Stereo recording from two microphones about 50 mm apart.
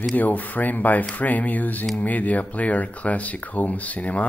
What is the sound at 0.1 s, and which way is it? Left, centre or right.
Speech, left.